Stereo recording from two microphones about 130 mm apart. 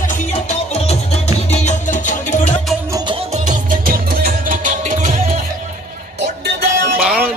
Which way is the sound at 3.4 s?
90° right.